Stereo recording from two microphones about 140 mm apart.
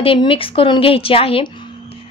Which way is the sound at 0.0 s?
40° left (ahead or behind).